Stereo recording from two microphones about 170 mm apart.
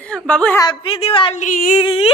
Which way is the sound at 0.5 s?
30° left (ahead or behind).